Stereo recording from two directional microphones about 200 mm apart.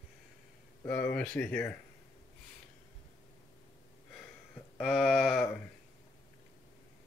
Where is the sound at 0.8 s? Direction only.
5° left (ahead or behind).